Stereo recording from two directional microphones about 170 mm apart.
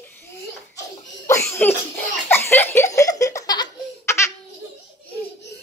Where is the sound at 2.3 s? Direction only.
15° left (ahead or behind).